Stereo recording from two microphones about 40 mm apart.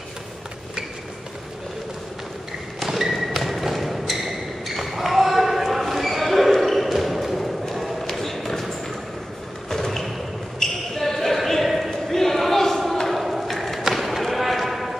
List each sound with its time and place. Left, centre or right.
2.8 s a sound: centre
4.7 s basketball bounce: centre
7.6 s run: centre
9.7 s thump: centre
10.6 s basketball bounce: centre
11.0 s a sound: centre
13.1 s basketball bounce: centre